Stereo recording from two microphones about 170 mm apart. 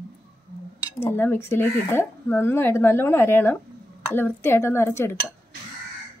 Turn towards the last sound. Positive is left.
turn(degrees=15)  # may be behind; listen again after turning